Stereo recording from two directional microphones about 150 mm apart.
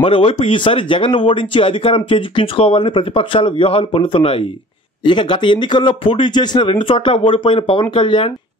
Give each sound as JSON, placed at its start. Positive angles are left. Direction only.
{"t": 0.0, "sound": "speech", "side_deg": 35}